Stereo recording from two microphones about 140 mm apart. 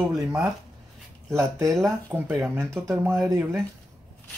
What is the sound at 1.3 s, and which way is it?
Speech, 20° right (ahead or behind).